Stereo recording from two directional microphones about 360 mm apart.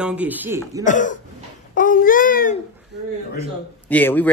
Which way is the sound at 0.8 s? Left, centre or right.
Left.